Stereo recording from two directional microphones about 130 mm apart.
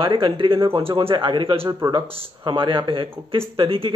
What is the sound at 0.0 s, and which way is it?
Speech, 40° right (ahead or behind).